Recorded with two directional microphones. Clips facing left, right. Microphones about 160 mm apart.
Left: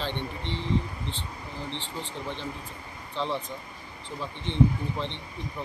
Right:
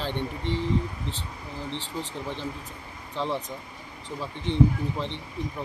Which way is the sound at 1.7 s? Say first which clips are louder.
Right 3 dB; 40° right (ahead or behind).